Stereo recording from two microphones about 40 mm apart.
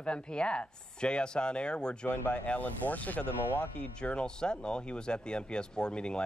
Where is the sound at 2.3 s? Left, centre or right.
Left.